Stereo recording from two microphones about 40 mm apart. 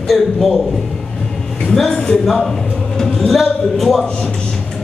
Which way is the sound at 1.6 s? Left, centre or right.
Centre.